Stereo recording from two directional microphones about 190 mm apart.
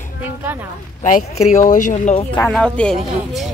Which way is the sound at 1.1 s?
40° left (ahead or behind).